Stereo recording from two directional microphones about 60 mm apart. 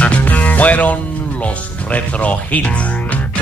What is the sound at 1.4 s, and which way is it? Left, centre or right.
Speech, left.